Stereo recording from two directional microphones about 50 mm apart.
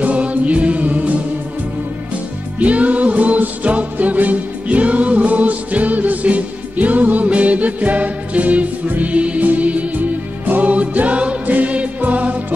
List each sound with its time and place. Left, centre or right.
0.0 s music: right
2.6 s music: right